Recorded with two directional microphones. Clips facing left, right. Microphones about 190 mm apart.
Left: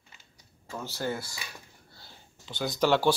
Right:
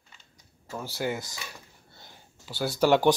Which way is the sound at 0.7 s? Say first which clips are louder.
Right 2 dB; 10° right (ahead or behind).